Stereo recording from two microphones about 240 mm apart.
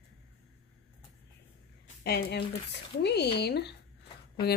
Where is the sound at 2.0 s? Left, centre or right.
Left.